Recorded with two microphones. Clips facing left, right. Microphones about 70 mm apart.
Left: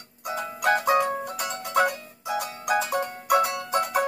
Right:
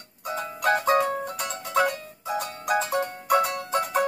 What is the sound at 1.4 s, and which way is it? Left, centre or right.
Music, left.